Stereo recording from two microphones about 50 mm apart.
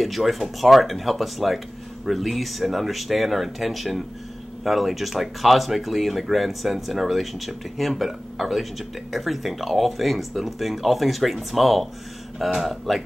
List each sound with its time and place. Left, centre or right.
0.0 s speech: centre